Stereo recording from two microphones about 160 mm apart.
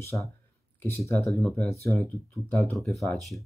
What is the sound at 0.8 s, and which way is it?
Speech, 15° left (ahead or behind).